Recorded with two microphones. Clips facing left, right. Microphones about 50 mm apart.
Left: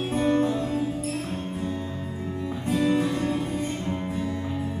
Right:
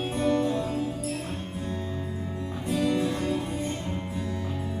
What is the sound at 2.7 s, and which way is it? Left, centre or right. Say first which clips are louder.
Music: left 3 dB; left.